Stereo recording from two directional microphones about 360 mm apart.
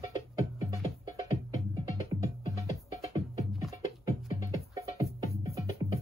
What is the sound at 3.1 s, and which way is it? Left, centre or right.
Music, centre.